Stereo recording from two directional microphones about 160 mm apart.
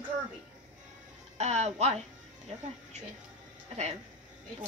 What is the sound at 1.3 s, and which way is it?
Speech, 45° right (ahead or behind).